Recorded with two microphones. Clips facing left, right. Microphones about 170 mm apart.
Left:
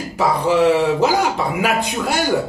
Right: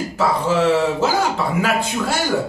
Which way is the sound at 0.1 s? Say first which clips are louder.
Left 3 dB; 15° left (ahead or behind).